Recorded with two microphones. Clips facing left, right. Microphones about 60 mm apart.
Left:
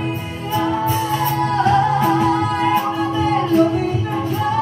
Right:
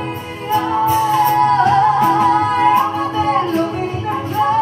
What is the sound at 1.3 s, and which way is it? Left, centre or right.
Music, right.